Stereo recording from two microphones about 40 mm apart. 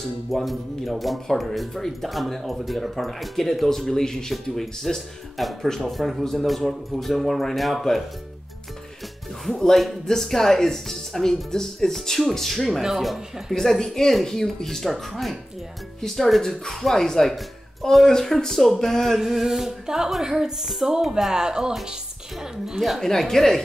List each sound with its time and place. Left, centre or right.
0.3 s speech: centre
9.4 s speech: centre
19.1 s a woman's voice: centre
22.8 s speech: centre